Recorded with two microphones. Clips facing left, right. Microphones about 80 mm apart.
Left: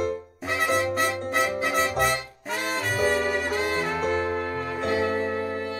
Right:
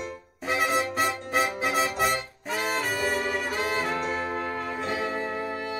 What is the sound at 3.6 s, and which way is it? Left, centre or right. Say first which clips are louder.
Brass instrument: left 2 dB; centre.